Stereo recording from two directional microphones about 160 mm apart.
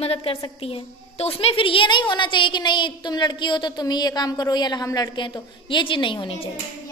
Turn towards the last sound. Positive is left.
turn(degrees=35)  # may be behind; listen again after turning